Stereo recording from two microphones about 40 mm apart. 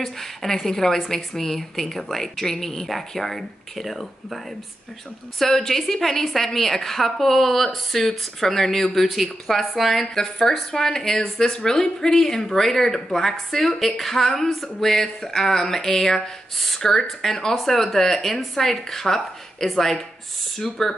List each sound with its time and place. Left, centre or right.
0.0 s speech: centre
5.4 s a woman's voice: centre
10.1 s speech: centre